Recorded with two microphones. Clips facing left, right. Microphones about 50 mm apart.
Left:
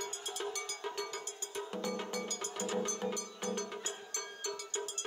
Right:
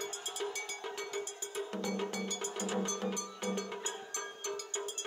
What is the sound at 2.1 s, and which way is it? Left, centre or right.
Music, right.